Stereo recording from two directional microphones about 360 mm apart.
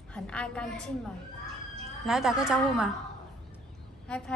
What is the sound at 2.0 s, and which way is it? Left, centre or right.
Speech, centre.